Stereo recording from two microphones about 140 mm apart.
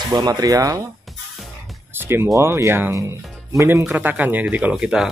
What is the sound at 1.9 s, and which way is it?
Speech, 15° right (ahead or behind).